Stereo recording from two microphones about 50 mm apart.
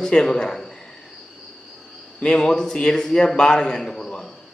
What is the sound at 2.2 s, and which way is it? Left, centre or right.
A man's voice, centre.